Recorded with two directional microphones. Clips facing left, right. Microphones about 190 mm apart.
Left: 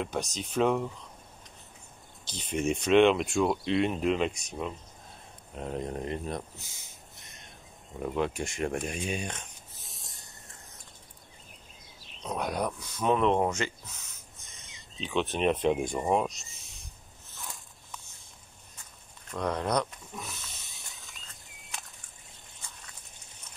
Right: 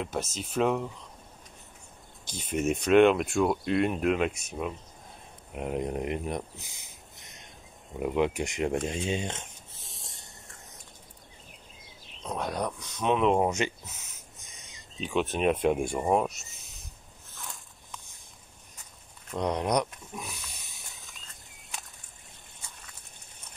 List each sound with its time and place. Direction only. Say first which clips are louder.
0.0 s speech: even; 5° right (ahead or behind)
2.5 s speech: right 1 dB; 5° right (ahead or behind)
5.5 s speech: right 3 dB; 15° right (ahead or behind)
12.2 s speech: even; centre (ahead or behind)
17.4 s biting: even; centre (ahead or behind)
19.3 s speech: right 2 dB; 20° right (ahead or behind)
20.8 s a sound: even; centre (ahead or behind)